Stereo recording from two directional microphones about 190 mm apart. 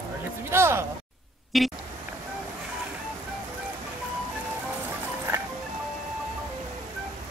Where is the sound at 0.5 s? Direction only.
15° right (ahead or behind).